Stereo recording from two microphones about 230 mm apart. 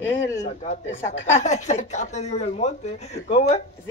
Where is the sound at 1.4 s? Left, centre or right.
Left.